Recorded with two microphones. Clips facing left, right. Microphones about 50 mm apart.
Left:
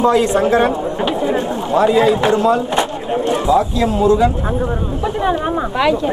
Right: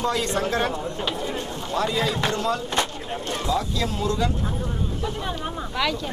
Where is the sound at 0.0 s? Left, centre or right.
Centre.